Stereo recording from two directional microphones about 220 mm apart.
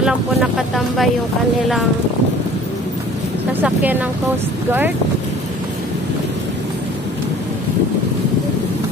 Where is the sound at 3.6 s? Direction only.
5° right (ahead or behind).